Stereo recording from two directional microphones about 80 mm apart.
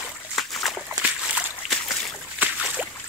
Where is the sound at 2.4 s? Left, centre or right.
Centre.